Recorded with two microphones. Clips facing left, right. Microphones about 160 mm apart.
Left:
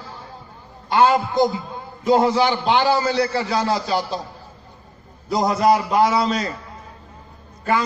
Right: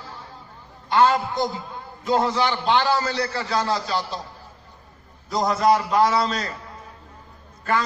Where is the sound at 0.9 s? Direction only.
15° left (ahead or behind).